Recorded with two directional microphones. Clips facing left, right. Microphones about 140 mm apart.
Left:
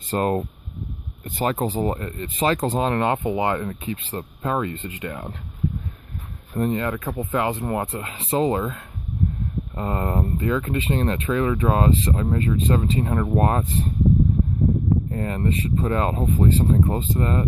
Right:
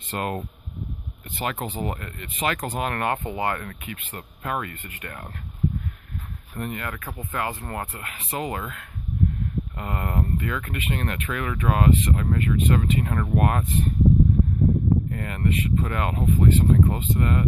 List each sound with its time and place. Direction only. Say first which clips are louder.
0.1 s speech: left 7 dB; 35° left (ahead or behind); by 5.3 s 20° left (ahead or behind)
6.5 s speech: left 9 dB; 30° left (ahead or behind)
15.0 s speech: left 2 dB; 30° left (ahead or behind)